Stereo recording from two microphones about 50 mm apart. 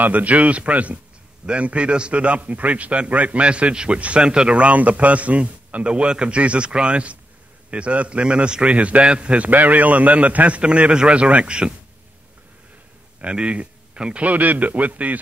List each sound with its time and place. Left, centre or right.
0.0 s a man's voice: right
13.2 s a man's voice: right
14.2 s a man's voice: right